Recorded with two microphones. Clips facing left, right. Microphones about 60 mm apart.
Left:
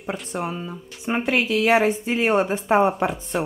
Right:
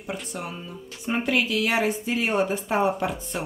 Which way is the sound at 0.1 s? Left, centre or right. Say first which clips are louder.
Left 5 dB; left.